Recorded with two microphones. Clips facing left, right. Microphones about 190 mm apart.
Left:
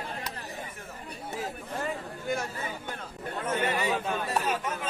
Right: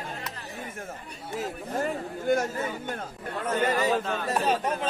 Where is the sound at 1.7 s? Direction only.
50° right (ahead or behind).